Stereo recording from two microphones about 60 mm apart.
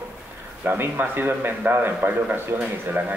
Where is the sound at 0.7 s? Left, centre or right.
Right.